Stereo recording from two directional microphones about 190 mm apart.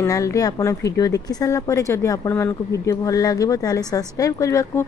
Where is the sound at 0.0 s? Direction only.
15° left (ahead or behind).